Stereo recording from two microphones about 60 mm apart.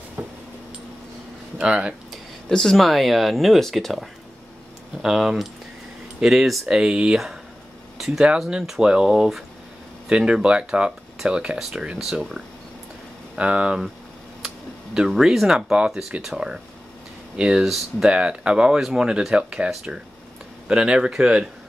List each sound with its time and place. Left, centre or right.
0.2 s a sound: right
1.6 s speech: centre
2.5 s speech: centre
8.0 s a sound: centre
8.6 s speech: centre
13.4 s speech: centre
15.0 s speech: centre
17.4 s speech: centre